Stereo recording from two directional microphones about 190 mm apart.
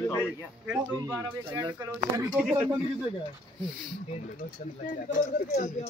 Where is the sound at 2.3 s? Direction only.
5° right (ahead or behind).